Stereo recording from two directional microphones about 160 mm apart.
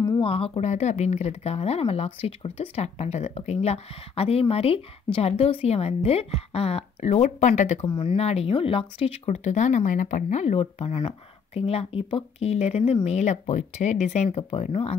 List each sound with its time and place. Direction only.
0.2 s speech: 35° left (ahead or behind)
7.8 s speech: 30° left (ahead or behind)